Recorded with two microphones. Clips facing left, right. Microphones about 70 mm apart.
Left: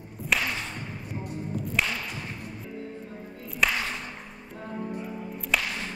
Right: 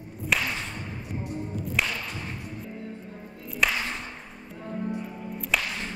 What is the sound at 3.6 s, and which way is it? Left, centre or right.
Music, centre.